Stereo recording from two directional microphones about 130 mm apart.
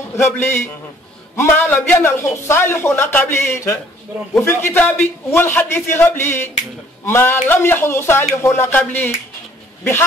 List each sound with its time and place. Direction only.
0.1 s a man's voice: 15° left (ahead or behind)